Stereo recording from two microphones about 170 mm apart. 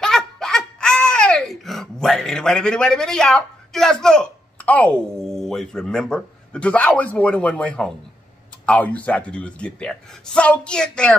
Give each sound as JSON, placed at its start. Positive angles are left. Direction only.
{"t": 0.0, "sound": "laughter", "side_deg": 5}
{"t": 8.6, "sound": "speech", "side_deg": 10}